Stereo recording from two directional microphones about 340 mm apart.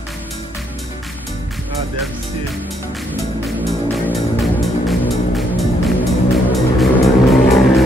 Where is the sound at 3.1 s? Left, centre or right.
Centre.